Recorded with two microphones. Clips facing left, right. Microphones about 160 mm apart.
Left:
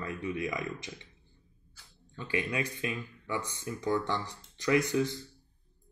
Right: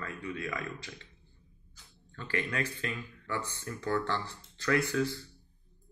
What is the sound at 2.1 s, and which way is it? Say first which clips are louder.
Speech: left 1 dB; 15° left (ahead or behind).